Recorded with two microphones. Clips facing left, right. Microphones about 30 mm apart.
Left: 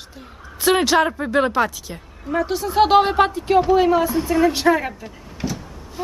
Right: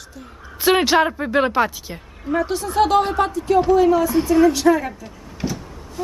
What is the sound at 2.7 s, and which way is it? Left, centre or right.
Speech, left.